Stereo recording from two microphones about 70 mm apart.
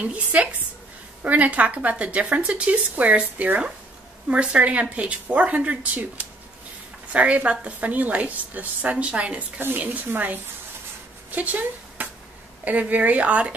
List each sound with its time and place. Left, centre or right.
0.0 s a woman's voice: centre
9.6 s speech: right
11.2 s a sound: right
12.6 s speech: right